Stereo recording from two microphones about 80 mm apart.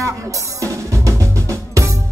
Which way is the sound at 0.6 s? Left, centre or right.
Right.